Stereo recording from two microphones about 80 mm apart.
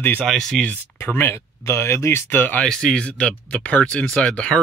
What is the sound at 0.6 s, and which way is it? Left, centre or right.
Speech, left.